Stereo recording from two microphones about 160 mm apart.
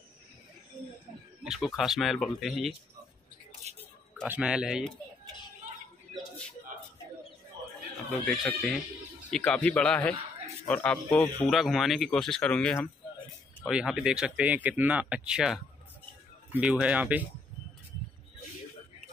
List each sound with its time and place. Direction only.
1.4 s speech: 5° right (ahead or behind)
3.7 s a man's voice: 45° right (ahead or behind)
4.3 s speech: 5° right (ahead or behind)
8.1 s a man's voice: 5° left (ahead or behind)
13.7 s speech: 5° right (ahead or behind)